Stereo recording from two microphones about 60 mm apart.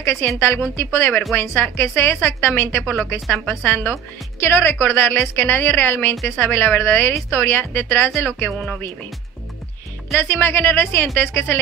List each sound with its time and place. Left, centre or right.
0.0 s a woman's voice: left
4.4 s a woman's voice: left
8.5 s speech: centre
10.2 s a woman's voice: left